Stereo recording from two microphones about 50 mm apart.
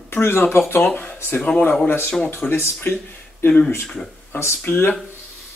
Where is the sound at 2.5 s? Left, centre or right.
Left.